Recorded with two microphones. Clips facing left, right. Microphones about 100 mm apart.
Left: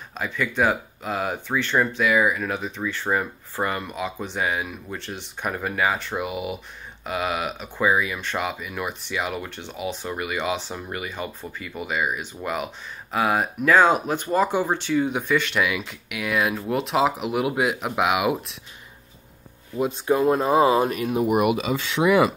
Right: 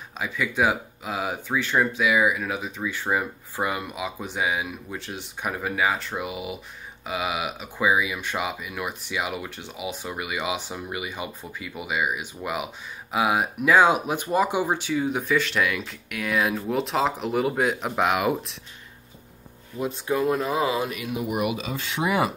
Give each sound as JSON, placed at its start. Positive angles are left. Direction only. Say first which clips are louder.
{"t": 0.2, "sound": "speech", "louder": "left 1 dB", "side_deg": -5}
{"t": 19.8, "sound": "speech", "louder": "left 4 dB", "side_deg": 30}